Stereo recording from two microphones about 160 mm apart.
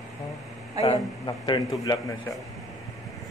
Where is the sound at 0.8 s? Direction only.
30° left (ahead or behind).